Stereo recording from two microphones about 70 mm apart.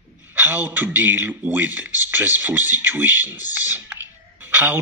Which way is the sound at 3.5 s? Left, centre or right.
Right.